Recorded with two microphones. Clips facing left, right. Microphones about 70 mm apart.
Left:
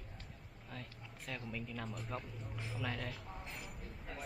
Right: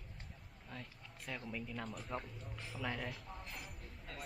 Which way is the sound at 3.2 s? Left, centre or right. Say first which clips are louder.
Left 1 dB; centre.